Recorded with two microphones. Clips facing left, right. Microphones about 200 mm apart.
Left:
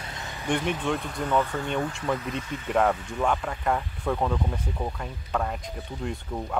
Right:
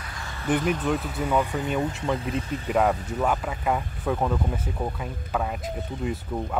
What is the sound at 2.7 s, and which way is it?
Speech, 5° right (ahead or behind).